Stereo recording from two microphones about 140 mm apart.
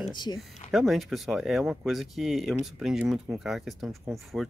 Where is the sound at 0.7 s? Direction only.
Centre (ahead or behind).